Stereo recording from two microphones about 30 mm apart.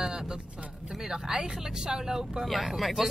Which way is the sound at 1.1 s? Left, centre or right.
Right.